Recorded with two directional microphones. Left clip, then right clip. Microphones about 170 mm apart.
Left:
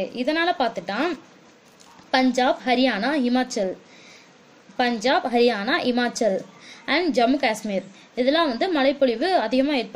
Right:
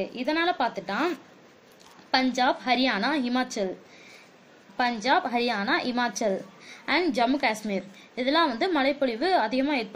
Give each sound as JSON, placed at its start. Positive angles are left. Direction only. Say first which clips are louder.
{"t": 0.0, "sound": "a woman's voice", "louder": "left 3 dB", "side_deg": 45}
{"t": 2.1, "sound": "a woman's voice", "louder": "left 4 dB", "side_deg": 35}
{"t": 4.7, "sound": "a woman's voice", "louder": "left 3 dB", "side_deg": 40}